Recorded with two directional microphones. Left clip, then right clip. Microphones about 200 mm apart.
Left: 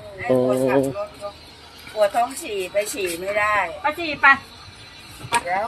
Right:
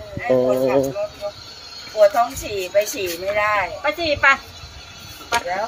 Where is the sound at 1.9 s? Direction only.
Centre (ahead or behind).